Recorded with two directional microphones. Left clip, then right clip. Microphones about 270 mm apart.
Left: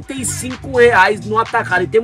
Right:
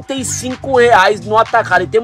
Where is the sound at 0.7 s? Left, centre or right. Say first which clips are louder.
Right 2 dB; right.